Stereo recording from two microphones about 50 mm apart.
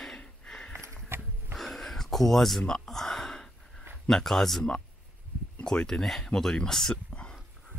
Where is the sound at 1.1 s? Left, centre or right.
Right.